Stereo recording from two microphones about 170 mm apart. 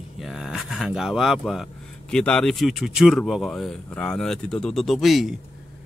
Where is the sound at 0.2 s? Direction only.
Centre (ahead or behind).